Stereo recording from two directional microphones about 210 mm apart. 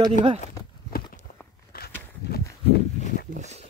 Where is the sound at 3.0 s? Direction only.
40° left (ahead or behind).